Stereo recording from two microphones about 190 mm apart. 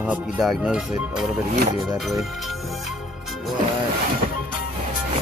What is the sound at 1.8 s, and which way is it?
Music, centre (ahead or behind).